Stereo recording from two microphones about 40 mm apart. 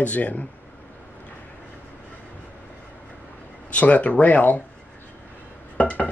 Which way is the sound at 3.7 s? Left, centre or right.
Left.